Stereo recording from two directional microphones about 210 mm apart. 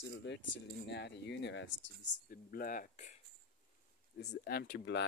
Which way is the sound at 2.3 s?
45° left (ahead or behind).